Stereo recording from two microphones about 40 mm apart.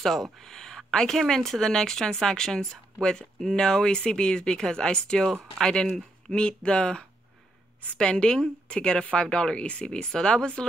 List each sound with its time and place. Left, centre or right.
0.0 s speech: centre